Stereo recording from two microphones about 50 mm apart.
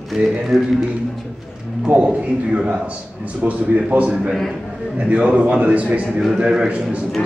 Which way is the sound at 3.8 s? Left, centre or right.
Right.